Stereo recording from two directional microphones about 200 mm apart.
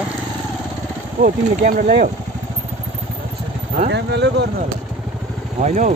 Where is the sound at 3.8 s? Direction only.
60° right (ahead or behind).